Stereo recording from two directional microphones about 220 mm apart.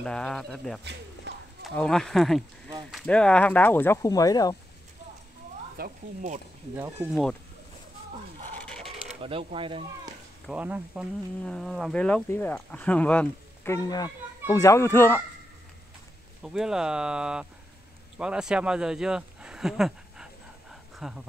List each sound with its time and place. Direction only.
0.0 s speech: 5° left (ahead or behind)
1.3 s a sound: 50° right (ahead or behind)
1.6 s speech: centre (ahead or behind)
5.8 s speech: 35° right (ahead or behind)
8.5 s a sound: 5° left (ahead or behind)
9.2 s speech: 25° right (ahead or behind)
10.4 s speech: 5° right (ahead or behind); by 15.2 s 10° left (ahead or behind)
16.4 s speech: 5° right (ahead or behind)